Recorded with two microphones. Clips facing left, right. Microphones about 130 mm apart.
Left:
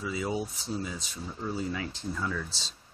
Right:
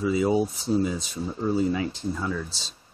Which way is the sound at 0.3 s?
30° right (ahead or behind).